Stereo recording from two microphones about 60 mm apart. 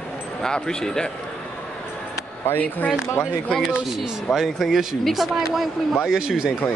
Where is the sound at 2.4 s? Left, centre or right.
Left.